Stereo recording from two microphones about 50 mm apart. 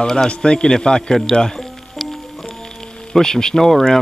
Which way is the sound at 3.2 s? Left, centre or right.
Centre.